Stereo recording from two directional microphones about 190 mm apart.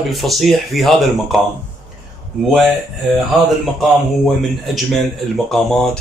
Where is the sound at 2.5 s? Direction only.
Centre (ahead or behind).